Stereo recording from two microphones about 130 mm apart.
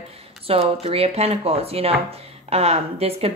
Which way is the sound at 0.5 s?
50° right (ahead or behind).